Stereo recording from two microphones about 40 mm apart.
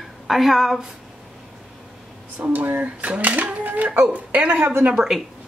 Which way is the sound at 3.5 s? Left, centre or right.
Right.